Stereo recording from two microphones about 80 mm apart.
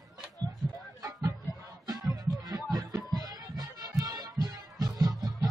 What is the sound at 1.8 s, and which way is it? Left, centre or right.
Music, right.